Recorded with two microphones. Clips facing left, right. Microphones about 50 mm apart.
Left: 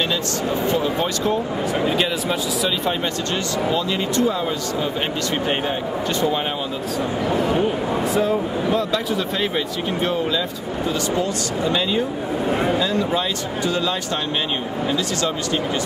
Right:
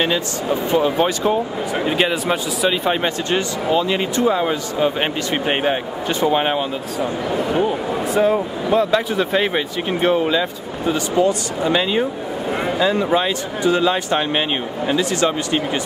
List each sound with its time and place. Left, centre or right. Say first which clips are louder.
0.7 s speech: right 4 dB; right
4.2 s speech: right 4 dB; right
7.0 s speech: even; centre
8.7 s speech: right 9 dB; right
12.4 s speech: left 1 dB; centre
12.7 s speech: right 3 dB; right